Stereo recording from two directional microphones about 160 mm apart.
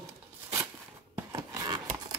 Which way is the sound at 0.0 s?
20° right (ahead or behind).